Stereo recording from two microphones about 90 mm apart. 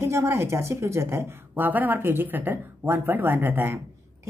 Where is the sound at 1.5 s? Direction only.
20° right (ahead or behind).